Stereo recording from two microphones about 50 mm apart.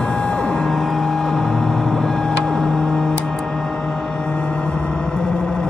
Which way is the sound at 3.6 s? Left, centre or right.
Centre.